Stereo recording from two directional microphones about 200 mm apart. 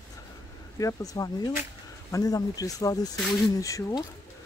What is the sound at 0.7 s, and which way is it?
Speech, 15° left (ahead or behind).